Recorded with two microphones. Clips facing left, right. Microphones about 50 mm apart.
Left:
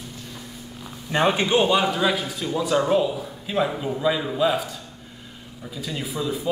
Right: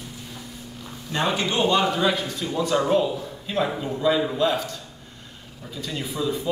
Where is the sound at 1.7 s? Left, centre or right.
Centre.